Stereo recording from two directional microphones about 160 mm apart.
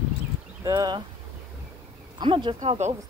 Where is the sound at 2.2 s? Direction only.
30° right (ahead or behind).